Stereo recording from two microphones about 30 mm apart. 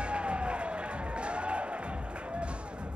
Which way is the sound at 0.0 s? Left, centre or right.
Right.